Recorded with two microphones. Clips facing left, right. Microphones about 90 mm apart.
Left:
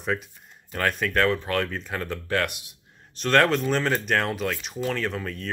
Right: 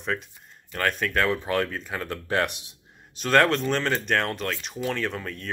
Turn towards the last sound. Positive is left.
turn(degrees=0)  # may be behind; listen again after turning